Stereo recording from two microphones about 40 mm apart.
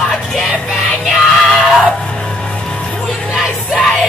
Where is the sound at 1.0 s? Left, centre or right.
Centre.